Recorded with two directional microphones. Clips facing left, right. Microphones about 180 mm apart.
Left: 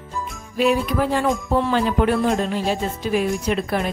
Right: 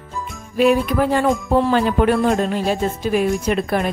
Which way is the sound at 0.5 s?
55° right (ahead or behind).